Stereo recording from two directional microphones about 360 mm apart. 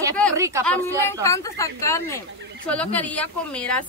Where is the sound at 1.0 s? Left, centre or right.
Centre.